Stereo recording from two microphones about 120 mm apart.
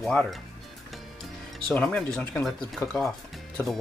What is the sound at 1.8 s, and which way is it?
Speech, 10° left (ahead or behind).